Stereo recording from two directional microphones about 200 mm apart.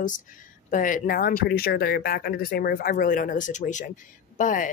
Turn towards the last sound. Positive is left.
turn(degrees=40)  # may be behind; listen again after turning